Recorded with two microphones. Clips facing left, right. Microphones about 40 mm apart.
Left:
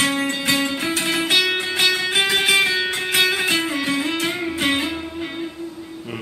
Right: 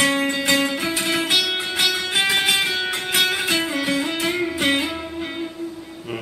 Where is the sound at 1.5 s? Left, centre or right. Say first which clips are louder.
Left 2 dB; centre.